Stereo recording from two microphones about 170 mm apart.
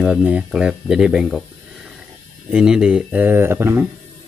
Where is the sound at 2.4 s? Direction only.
5° right (ahead or behind).